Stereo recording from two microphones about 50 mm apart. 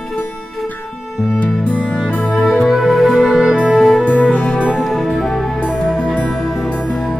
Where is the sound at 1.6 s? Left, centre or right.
Left.